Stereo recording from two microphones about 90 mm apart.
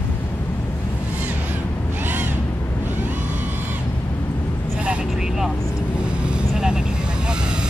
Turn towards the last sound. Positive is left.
turn(degrees=-10)  # may be behind; listen again after turning